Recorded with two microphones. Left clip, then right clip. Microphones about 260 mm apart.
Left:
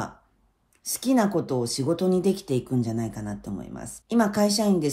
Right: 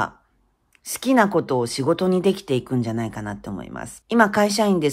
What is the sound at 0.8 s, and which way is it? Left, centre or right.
Speech, centre.